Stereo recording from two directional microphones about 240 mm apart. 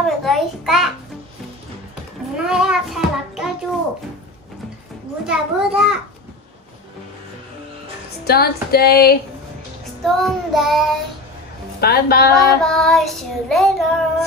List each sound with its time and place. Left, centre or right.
0.0 s child singing: centre
2.3 s child singing: centre
5.2 s child singing: centre
8.3 s a sound: left
10.0 s child singing: centre
11.8 s a sound: left
12.6 s child singing: centre